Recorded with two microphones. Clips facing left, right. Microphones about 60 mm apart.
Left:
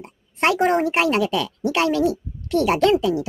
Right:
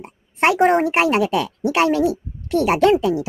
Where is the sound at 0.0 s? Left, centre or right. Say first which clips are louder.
Right 3 dB; centre.